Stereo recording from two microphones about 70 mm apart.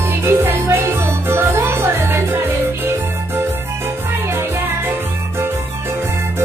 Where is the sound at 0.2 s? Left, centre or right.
Right.